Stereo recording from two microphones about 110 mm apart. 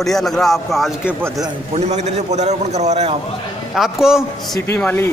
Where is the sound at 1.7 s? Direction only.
90° right.